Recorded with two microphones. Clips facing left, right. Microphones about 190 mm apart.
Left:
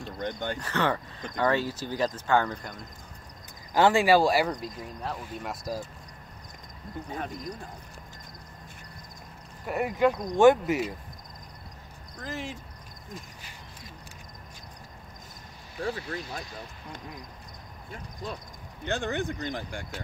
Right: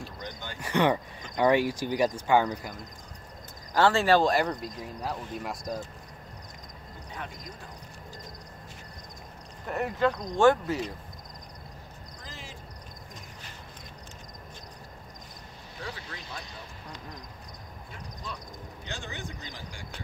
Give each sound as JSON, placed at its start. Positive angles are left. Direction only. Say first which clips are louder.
{"t": 0.2, "sound": "speech", "louder": "left 12 dB", "side_deg": 55}
{"t": 0.6, "sound": "speech", "louder": "right 6 dB", "side_deg": -15}
{"t": 3.7, "sound": "speech", "louder": "left 2 dB", "side_deg": 15}
{"t": 9.7, "sound": "speech", "louder": "left 2 dB", "side_deg": 10}
{"t": 12.2, "sound": "speech", "louder": "left 11 dB", "side_deg": 60}
{"t": 15.8, "sound": "speech", "louder": "left 9 dB", "side_deg": 45}
{"t": 18.9, "sound": "speech", "louder": "left 11 dB", "side_deg": 60}